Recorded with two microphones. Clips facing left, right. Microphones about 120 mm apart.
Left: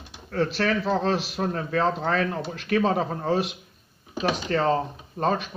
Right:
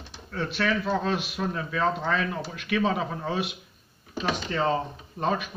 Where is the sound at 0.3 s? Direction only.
40° left (ahead or behind).